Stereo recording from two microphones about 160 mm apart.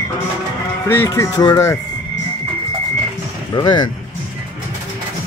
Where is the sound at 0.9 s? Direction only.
15° left (ahead or behind).